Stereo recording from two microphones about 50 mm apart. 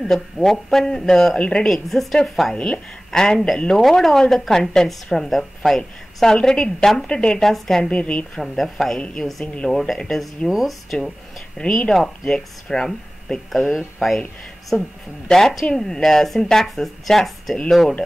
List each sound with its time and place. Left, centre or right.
0.1 s a woman's voice: centre
1.7 s speech: centre
2.5 s a woman's voice: left
7.3 s a woman's voice: centre
7.9 s a woman's voice: left
8.4 s a woman's voice: centre
10.5 s speech: centre
11.6 s a woman's voice: centre
13.5 s speech: centre
14.7 s a woman's voice: left
15.2 s a woman's voice: centre